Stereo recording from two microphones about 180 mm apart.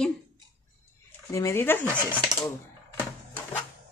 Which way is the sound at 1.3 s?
15° left (ahead or behind).